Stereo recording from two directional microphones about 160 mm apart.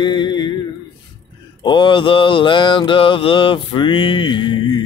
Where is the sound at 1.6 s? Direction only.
30° left (ahead or behind).